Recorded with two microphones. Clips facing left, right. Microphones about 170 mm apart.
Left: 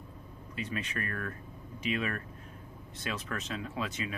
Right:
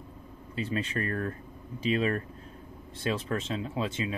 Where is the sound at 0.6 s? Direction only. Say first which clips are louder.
Right 6 dB; 30° right (ahead or behind).